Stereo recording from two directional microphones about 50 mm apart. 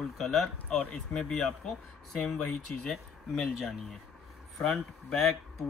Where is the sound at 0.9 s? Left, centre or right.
Centre.